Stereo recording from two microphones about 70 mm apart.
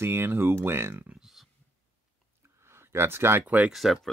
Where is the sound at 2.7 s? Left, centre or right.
Right.